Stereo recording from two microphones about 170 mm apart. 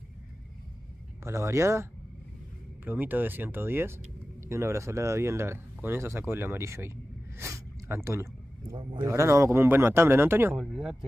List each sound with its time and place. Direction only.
1.2 s speech: 15° right (ahead or behind)
7.3 s snort: 15° right (ahead or behind)
8.9 s speech: 15° right (ahead or behind)
10.5 s speech: centre (ahead or behind)